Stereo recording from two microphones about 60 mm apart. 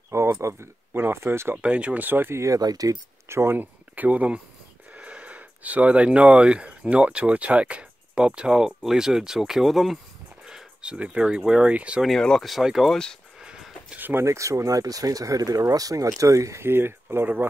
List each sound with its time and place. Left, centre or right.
0.4 s speech: right
1.6 s speech: right
2.3 s speech: right
3.3 s speech: right
3.5 s speech: right
12.0 s speech: centre
12.4 s speech: centre
12.9 s speech: centre
13.4 s music: centre
13.9 s speech: right
14.2 s speech: right
16.2 s speech: right
16.6 s speech: right